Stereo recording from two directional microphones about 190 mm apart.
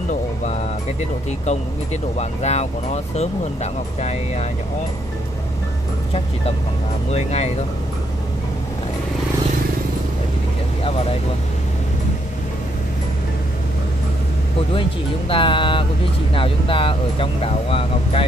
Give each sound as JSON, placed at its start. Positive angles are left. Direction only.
{"t": 2.1, "sound": "speech", "side_deg": 35}
{"t": 7.1, "sound": "speech", "side_deg": 35}
{"t": 14.7, "sound": "speech", "side_deg": 25}